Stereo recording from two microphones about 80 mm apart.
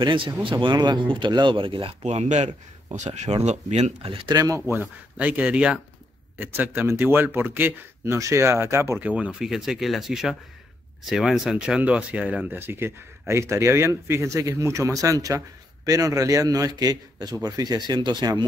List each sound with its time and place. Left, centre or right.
0.0 s speech: right
0.7 s speech: right
3.3 s speech: right
4.3 s speech: right
4.6 s speech: right
5.1 s speech: centre; by 8.9 s right
9.0 s speech: centre
9.5 s speech: centre; by 18.4 s right